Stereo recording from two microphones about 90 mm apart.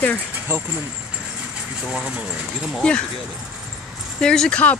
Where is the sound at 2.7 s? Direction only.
10° left (ahead or behind).